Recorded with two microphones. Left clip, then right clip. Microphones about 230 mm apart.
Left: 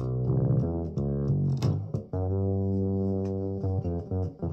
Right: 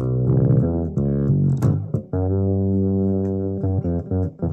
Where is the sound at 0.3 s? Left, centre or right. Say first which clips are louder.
Right 9 dB; right.